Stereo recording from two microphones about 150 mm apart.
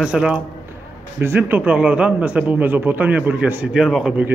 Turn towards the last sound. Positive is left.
turn(degrees=-5)  # may be behind; listen again after turning